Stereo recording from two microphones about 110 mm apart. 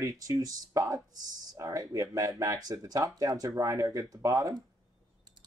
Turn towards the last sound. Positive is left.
turn(degrees=-30)  # may be behind; listen again after turning